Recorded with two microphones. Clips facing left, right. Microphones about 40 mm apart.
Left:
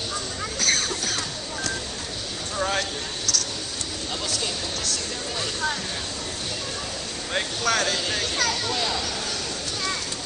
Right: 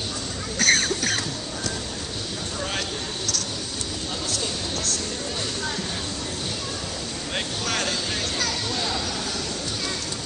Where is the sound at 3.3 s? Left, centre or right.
Right.